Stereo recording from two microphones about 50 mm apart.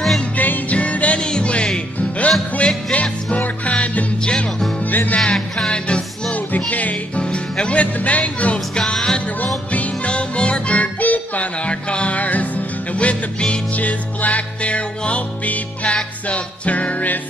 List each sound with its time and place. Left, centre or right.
0.4 s music: left; by 4.6 s centre
4.8 s music: left
5.2 s music: centre
6.7 s music: left
8.7 s music: centre
9.7 s music: left